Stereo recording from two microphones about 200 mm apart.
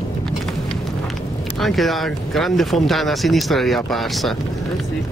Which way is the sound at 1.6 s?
Centre (ahead or behind).